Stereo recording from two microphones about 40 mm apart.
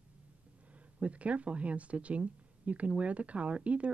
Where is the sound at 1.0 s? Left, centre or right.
Right.